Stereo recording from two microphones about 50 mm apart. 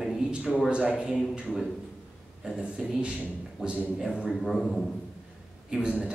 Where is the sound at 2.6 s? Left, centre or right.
Centre.